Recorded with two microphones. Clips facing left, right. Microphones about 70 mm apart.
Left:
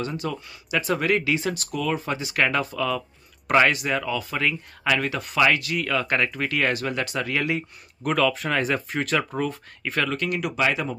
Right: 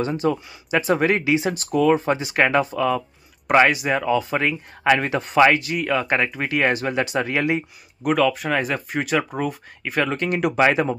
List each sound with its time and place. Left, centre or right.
0.0 s speech: right
3.4 s speech: centre
8.0 s speech: centre
10.0 s speech: right